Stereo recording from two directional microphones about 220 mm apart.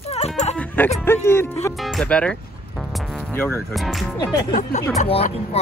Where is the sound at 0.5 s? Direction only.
5° left (ahead or behind).